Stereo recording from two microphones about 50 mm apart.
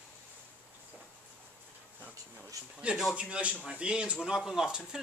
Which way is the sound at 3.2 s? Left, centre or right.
Right.